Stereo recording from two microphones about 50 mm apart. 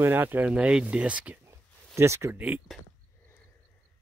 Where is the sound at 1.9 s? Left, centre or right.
Right.